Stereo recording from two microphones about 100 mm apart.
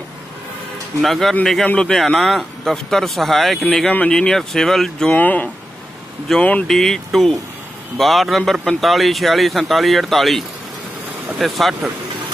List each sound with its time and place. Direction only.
1.0 s speech: centre (ahead or behind)
5.1 s speech: 15° left (ahead or behind)
6.3 s speech: 5° left (ahead or behind)